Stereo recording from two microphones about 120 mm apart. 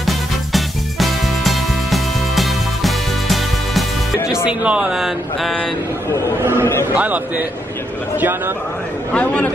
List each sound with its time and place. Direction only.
0.0 s music: centre (ahead or behind)
4.5 s speech: 10° right (ahead or behind)
6.6 s a man's voice: 20° left (ahead or behind)
7.0 s a man's voice: 15° right (ahead or behind)
9.1 s a man's voice: 10° left (ahead or behind)